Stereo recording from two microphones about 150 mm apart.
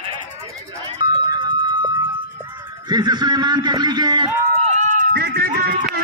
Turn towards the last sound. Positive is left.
turn(degrees=-90)